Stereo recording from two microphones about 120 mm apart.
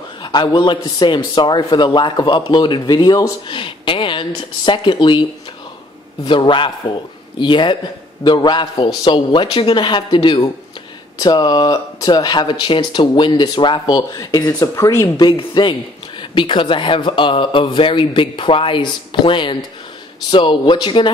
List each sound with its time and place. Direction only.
0.2 s a man's voice: 40° left (ahead or behind)
6.2 s a man's voice: 45° left (ahead or behind); by 15.1 s 20° left (ahead or behind)
15.1 s a man's voice: 40° left (ahead or behind)